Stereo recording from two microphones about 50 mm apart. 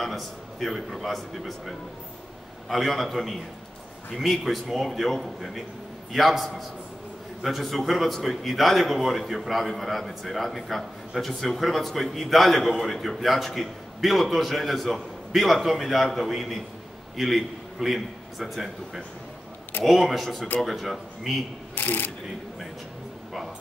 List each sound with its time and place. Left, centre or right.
0.0 s a man's voice: centre
21.7 s speech: left